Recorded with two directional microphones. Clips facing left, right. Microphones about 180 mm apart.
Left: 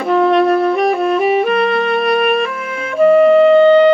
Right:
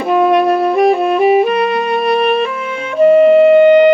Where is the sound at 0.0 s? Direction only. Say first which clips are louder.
Right 1 dB; 20° right (ahead or behind).